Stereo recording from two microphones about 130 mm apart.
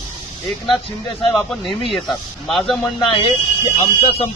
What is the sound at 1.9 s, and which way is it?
Speech, centre (ahead or behind).